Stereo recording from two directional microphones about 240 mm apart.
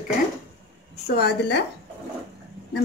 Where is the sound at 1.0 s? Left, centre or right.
Left.